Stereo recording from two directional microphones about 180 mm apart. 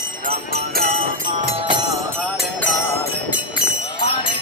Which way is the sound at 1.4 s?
25° right (ahead or behind).